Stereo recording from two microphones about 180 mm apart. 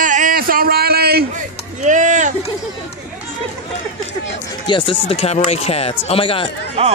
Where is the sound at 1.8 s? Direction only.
40° right (ahead or behind).